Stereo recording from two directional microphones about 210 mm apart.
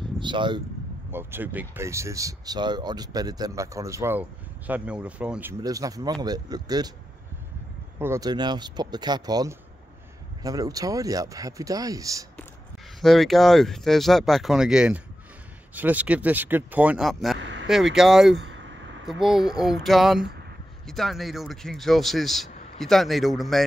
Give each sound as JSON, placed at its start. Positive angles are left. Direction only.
{"t": 0.0, "sound": "speech", "side_deg": -20}
{"t": 1.1, "sound": "speech", "side_deg": -10}
{"t": 8.0, "sound": "speech", "side_deg": -15}
{"t": 13.0, "sound": "a man's voice", "side_deg": 0}
{"t": 17.4, "sound": "speech", "side_deg": -60}
{"t": 17.6, "sound": "a man's voice", "side_deg": 0}